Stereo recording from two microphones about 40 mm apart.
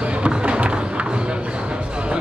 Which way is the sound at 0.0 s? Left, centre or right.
Right.